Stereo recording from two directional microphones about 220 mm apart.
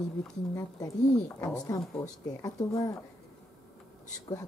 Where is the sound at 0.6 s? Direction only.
15° left (ahead or behind).